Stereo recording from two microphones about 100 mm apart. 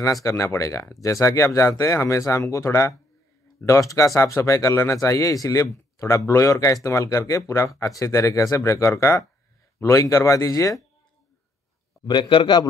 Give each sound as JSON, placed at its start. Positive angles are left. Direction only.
{"t": 0.0, "sound": "speech", "side_deg": 30}
{"t": 12.1, "sound": "a man's voice", "side_deg": 55}